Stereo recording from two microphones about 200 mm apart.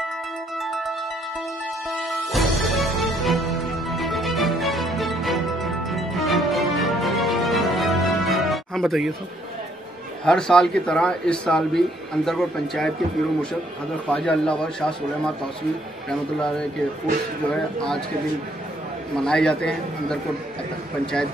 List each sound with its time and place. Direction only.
0.6 s music: centre (ahead or behind)
2.0 s music: centre (ahead or behind)
10.2 s a man's voice: 5° left (ahead or behind)
14.0 s a man's voice: 5° left (ahead or behind)
19.1 s a man's voice: 5° left (ahead or behind)